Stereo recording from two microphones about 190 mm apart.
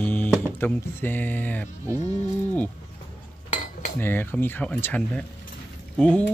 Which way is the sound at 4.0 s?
10° left (ahead or behind).